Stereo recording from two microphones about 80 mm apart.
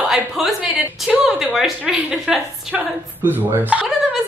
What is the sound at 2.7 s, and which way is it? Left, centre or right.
Speech, right.